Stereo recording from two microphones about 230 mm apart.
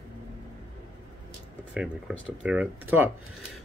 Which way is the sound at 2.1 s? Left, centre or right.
Centre.